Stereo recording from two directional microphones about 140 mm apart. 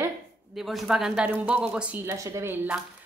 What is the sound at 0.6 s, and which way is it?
A woman's voice, centre (ahead or behind).